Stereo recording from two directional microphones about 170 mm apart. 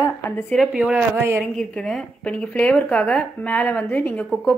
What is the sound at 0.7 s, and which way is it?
Speech, 5° right (ahead or behind).